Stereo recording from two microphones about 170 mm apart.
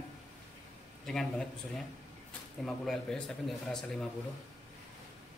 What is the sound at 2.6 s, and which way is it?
Speech, centre (ahead or behind).